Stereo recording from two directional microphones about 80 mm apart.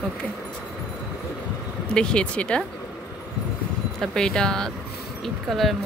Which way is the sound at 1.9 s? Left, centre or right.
Centre.